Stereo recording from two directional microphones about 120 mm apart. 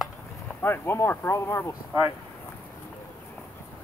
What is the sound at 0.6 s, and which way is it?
Speech, 20° left (ahead or behind).